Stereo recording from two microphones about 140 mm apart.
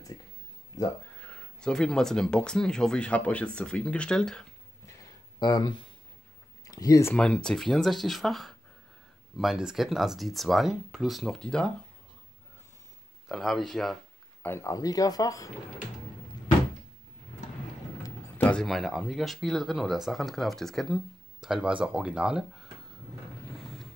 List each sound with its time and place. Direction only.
1.2 s speech: 5° left (ahead or behind)
5.4 s speech: 30° left (ahead or behind)
7.2 s speech: 5° left (ahead or behind)
13.3 s speech: centre (ahead or behind)
14.4 s speech: 20° left (ahead or behind)
18.4 s speech: 5° left (ahead or behind)